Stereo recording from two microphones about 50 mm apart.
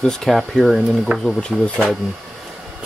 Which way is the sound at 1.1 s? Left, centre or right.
Right.